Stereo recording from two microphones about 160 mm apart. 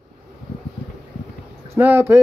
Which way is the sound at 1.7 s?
15° right (ahead or behind).